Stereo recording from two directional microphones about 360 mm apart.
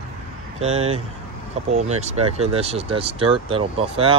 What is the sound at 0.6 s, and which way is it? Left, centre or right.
Speech, centre.